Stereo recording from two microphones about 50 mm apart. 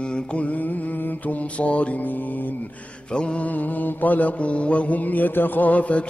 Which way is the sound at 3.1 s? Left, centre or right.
Centre.